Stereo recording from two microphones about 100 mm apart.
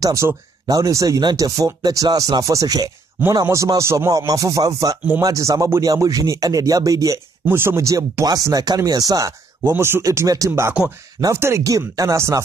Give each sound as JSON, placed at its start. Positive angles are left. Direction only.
{"t": 0.0, "sound": "speech", "side_deg": -30}
{"t": 7.4, "sound": "speech", "side_deg": -25}
{"t": 9.7, "sound": "speech", "side_deg": -25}
{"t": 10.5, "sound": "speech", "side_deg": -25}